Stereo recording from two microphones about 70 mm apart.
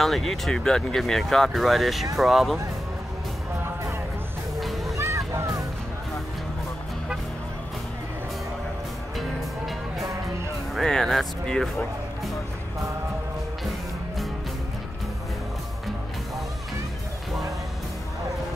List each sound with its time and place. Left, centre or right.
0.0 s speech: centre
4.6 s music: centre
4.9 s a sound: right
10.7 s speech: centre
13.7 s music: centre